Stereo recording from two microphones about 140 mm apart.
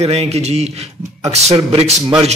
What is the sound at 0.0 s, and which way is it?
Speech, 50° right (ahead or behind).